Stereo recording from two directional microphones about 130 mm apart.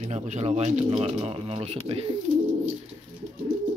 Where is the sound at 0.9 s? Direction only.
45° right (ahead or behind).